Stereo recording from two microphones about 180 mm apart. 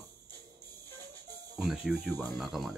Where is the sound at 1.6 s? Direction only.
5° right (ahead or behind).